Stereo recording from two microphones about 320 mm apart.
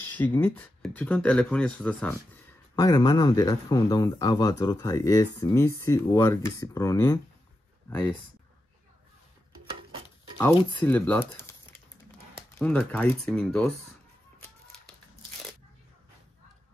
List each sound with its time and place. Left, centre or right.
0.0 s speech: centre
10.4 s speech: centre
12.5 s speech: centre